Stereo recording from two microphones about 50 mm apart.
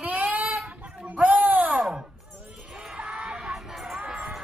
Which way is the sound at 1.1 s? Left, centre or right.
Right.